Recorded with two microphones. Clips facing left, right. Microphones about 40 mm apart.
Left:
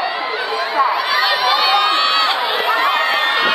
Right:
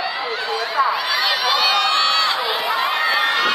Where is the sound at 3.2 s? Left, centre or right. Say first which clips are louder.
Left 2 dB; left.